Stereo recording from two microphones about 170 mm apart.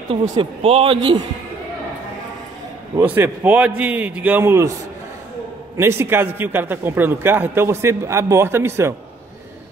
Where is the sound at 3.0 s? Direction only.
10° right (ahead or behind).